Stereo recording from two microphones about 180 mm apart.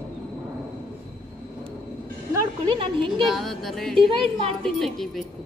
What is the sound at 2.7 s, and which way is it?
Speech, 30° right (ahead or behind).